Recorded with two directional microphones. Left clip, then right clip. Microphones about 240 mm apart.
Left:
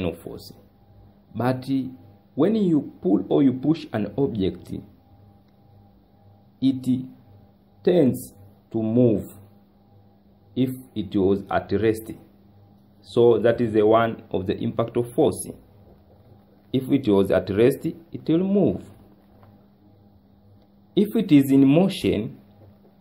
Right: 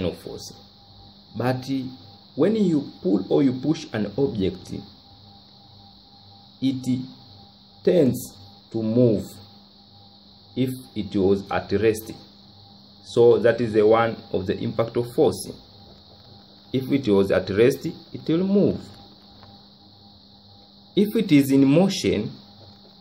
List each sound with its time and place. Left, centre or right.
1.3 s speech: centre
6.6 s speech: centre
10.5 s speech: centre
16.7 s speech: centre
20.9 s speech: centre